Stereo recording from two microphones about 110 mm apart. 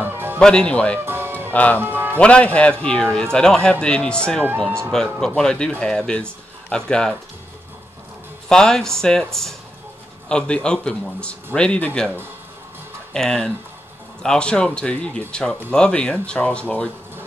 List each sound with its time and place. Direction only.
0.0 s music: 20° right (ahead or behind)
0.4 s speech: 5° left (ahead or behind)
1.0 s music: 20° right (ahead or behind)
1.5 s speech: 15° left (ahead or behind)
1.8 s music: 20° right (ahead or behind)
2.1 s speech: 10° left (ahead or behind)
4.6 s speech: 20° right (ahead or behind)
5.2 s speech: 5° left (ahead or behind)
8.5 s speech: 5° left (ahead or behind)
13.1 s speech: 5° left (ahead or behind)